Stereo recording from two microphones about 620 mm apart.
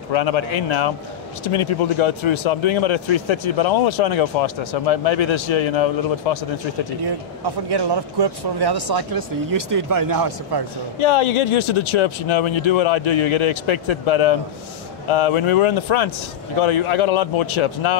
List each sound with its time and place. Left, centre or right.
0.1 s speech: left
7.0 s speech: right
11.0 s speech: left